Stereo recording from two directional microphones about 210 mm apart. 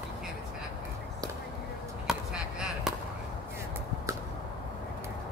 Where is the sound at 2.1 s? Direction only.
5° right (ahead or behind).